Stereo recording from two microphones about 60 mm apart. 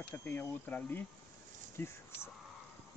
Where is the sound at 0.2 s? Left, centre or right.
Left.